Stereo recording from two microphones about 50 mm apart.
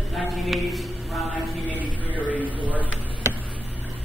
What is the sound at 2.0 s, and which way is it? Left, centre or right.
Speech, left.